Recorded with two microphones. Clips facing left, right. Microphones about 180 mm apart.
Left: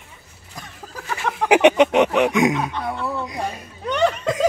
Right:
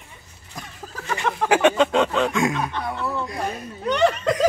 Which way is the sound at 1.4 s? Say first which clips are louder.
Left 4 dB; 15° left (ahead or behind).